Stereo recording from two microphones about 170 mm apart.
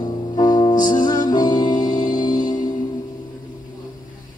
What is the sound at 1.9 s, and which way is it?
Music, 55° left (ahead or behind).